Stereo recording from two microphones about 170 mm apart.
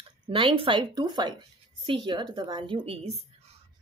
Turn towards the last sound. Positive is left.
turn(degrees=-30)  # may be behind; listen again after turning